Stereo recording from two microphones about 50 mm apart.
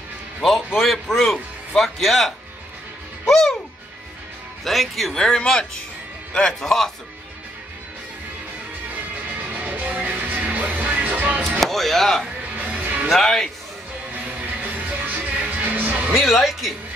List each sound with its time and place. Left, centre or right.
0.4 s a man's voice: centre
4.6 s a man's voice: centre
9.4 s music: right
11.6 s speech: centre
12.5 s music: right
13.1 s speech: centre
14.2 s music: right
16.3 s a man's voice: centre